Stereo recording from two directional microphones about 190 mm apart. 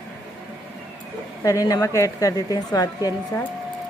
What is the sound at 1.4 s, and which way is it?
A woman's voice, 15° left (ahead or behind).